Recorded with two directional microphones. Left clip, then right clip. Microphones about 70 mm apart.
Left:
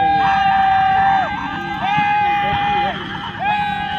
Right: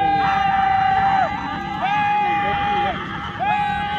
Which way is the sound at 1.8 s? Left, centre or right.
Left.